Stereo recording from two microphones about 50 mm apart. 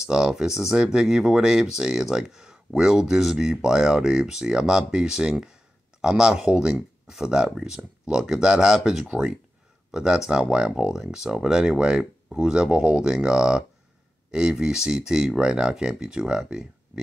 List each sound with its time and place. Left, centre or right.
0.0 s speech: centre